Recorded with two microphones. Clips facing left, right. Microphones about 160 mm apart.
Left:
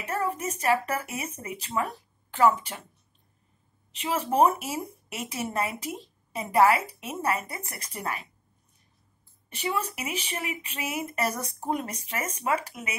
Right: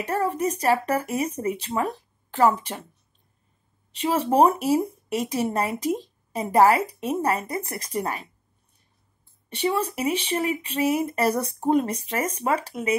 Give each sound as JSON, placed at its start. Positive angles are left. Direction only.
{"t": 0.0, "sound": "speech", "side_deg": -35}
{"t": 3.9, "sound": "speech", "side_deg": -35}
{"t": 9.5, "sound": "speech", "side_deg": -30}